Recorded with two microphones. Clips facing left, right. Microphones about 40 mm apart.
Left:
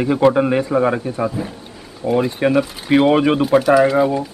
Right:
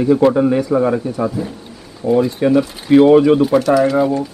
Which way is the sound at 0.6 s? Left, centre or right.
Left.